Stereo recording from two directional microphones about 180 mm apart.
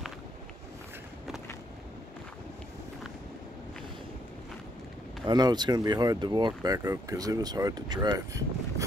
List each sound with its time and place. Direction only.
5.2 s speech: 25° right (ahead or behind)